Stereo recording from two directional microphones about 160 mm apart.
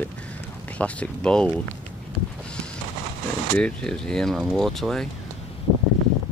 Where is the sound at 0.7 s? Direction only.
10° left (ahead or behind).